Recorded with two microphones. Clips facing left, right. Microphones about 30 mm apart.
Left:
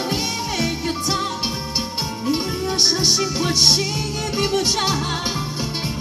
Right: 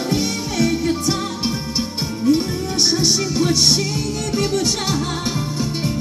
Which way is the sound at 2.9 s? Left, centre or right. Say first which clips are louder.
Right 3 dB; centre.